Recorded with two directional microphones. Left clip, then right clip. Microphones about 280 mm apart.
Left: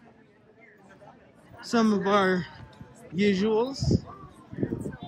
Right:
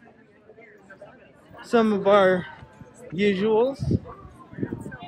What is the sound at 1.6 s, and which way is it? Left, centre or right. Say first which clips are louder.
Speech: right 5 dB; centre.